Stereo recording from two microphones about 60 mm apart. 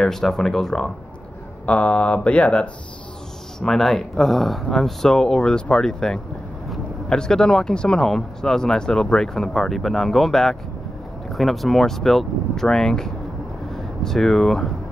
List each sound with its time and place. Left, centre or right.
0.0 s speech: centre
1.7 s speech: left
3.5 s speech: centre